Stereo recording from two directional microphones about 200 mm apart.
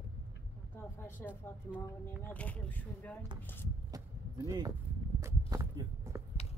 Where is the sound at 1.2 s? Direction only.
5° left (ahead or behind).